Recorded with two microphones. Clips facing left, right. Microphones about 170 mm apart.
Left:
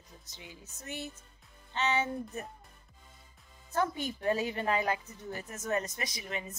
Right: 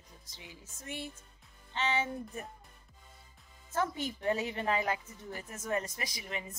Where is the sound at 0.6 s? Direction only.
25° right (ahead or behind).